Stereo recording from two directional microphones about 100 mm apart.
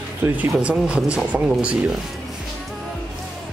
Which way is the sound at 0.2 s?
20° right (ahead or behind).